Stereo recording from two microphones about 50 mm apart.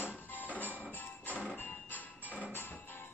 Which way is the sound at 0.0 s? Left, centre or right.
Left.